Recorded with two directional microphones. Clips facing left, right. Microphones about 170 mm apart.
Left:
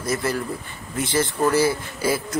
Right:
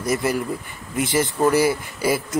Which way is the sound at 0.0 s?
15° right (ahead or behind).